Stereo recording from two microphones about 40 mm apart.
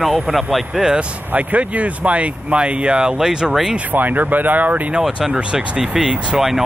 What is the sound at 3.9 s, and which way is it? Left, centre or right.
Speech, right.